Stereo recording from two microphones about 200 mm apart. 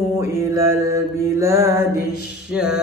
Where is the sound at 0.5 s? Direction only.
15° right (ahead or behind).